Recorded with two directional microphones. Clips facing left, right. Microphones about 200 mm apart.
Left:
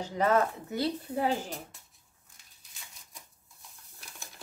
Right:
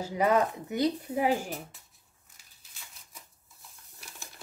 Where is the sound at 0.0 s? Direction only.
10° right (ahead or behind).